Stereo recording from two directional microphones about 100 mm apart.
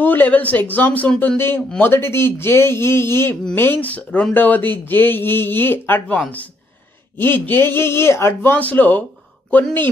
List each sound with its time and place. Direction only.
0.0 s speech: 20° left (ahead or behind)